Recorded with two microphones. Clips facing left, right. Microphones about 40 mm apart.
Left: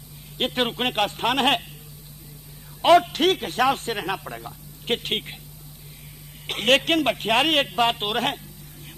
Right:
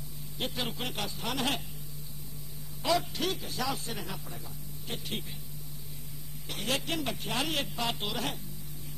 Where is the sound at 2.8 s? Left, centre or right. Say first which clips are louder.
Left 13 dB; left.